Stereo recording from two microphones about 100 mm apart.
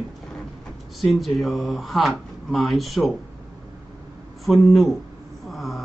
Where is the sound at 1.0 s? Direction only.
Centre (ahead or behind).